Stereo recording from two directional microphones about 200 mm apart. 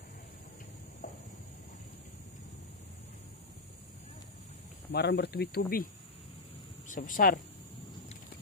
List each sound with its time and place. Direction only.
1.0 s a sound: 45° left (ahead or behind)
4.9 s speech: 55° left (ahead or behind)
6.9 s speech: 40° left (ahead or behind)